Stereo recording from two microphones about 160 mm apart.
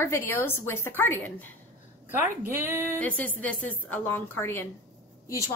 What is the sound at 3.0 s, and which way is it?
A woman's voice, 10° left (ahead or behind).